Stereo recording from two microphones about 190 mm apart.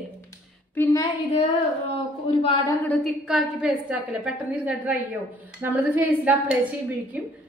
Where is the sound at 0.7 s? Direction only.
15° left (ahead or behind).